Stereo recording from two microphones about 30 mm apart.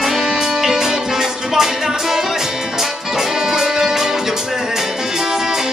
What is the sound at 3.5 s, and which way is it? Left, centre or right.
Music, centre.